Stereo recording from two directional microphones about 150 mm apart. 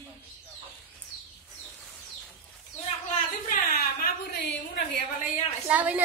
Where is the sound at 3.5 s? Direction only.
70° left (ahead or behind).